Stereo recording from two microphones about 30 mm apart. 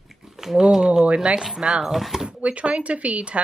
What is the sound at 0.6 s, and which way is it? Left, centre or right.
Speech, right.